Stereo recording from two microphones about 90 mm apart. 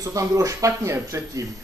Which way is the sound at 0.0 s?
40° right (ahead or behind).